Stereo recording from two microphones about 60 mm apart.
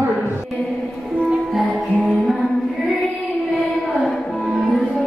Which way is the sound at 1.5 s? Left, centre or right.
Centre.